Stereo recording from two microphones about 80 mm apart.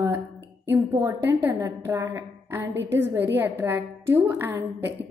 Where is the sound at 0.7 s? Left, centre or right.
Right.